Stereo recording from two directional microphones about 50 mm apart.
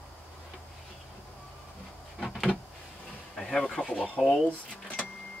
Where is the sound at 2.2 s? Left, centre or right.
Centre.